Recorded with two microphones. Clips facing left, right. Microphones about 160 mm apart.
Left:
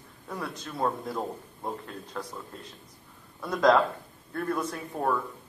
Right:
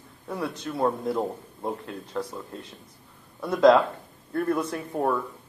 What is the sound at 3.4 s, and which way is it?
Speech, 20° right (ahead or behind).